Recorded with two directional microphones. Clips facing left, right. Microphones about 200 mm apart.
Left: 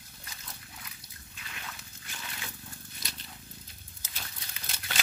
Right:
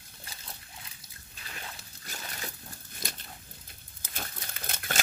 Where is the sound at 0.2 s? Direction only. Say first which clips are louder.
Right 2 dB; 30° right (ahead or behind).